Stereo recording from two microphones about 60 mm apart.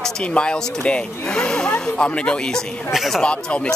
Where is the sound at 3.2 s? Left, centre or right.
Centre.